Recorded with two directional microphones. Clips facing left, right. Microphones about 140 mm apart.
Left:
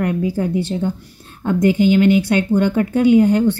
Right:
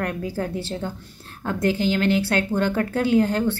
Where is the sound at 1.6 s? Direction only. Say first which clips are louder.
Left 8 dB; 15° left (ahead or behind).